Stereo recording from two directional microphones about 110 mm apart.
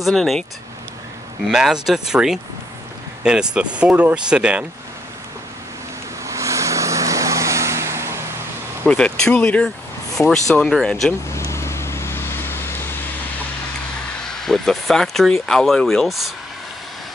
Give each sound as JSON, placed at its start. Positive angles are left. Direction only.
{"t": 0.0, "sound": "speech", "side_deg": 0}
{"t": 1.5, "sound": "speech", "side_deg": -5}
{"t": 6.2, "sound": "vehicle", "side_deg": -30}
{"t": 8.8, "sound": "speech", "side_deg": 10}
{"t": 11.3, "sound": "vehicle", "side_deg": 25}
{"t": 14.2, "sound": "speech", "side_deg": 5}